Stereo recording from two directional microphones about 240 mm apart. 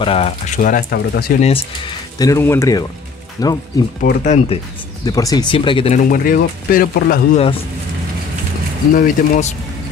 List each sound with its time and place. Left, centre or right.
0.0 s speech: left
1.4 s speech: left
4.0 s speech: left
5.0 s speech: centre; by 7.4 s left
8.9 s speech: left